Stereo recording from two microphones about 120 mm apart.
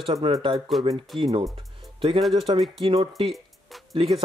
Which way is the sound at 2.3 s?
45° right (ahead or behind).